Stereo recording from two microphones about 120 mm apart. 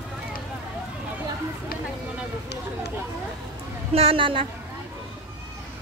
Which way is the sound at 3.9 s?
50° right (ahead or behind).